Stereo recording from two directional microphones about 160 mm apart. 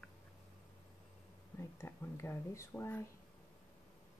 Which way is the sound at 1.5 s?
15° left (ahead or behind).